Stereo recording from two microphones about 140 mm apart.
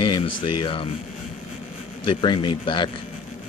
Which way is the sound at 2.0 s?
35° left (ahead or behind).